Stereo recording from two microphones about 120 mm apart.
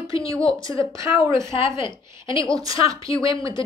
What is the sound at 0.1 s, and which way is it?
Speech, 45° left (ahead or behind).